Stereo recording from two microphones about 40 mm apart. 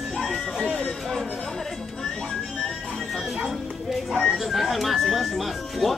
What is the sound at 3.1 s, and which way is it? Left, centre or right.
Music, centre.